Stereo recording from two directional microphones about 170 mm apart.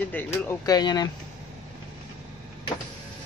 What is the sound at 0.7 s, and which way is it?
Speech, 25° left (ahead or behind).